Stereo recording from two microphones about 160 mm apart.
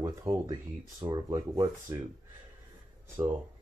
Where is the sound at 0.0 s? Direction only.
20° right (ahead or behind).